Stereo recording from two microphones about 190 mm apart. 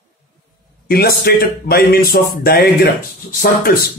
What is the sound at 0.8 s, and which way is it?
A man's voice, 55° left (ahead or behind).